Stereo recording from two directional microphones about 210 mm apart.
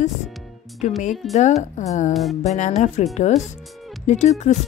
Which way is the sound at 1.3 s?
35° left (ahead or behind).